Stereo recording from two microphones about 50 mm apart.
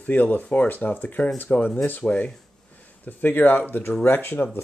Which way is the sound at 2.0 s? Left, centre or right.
Left.